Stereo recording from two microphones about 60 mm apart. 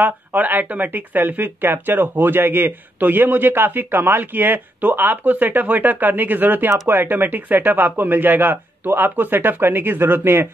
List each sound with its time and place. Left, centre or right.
0.0 s speech: right